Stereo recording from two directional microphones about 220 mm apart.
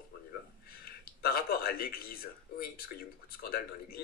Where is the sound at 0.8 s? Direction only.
45° left (ahead or behind).